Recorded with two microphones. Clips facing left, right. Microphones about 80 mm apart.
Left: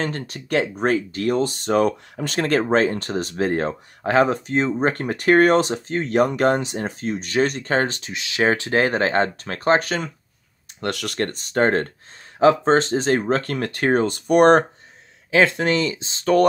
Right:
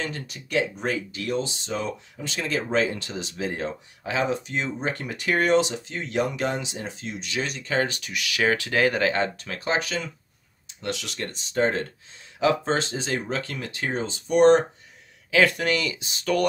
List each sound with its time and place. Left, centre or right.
0.0 s speech: left
10.8 s speech: left
15.3 s speech: left